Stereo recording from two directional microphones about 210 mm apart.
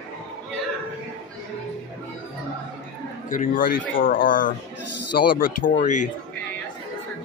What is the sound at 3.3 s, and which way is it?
Speech, 40° left (ahead or behind).